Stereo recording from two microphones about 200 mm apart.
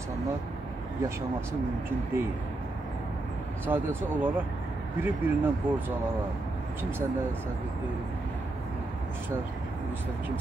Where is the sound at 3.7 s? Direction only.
10° right (ahead or behind).